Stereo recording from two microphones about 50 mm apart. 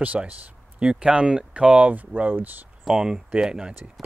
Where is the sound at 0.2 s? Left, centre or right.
Right.